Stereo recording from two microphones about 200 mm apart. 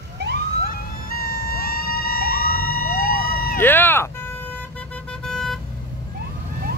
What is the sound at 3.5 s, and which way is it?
Vehicle, 10° left (ahead or behind).